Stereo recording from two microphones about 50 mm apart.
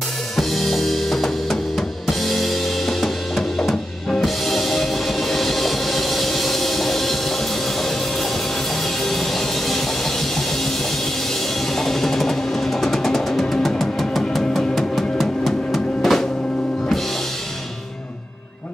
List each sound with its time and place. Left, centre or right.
0.4 s drum kit: centre
9.0 s music: centre
11.7 s music: centre